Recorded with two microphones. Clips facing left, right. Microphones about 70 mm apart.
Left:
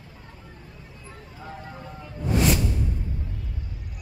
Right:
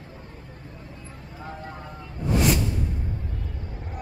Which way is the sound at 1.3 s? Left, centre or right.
Right.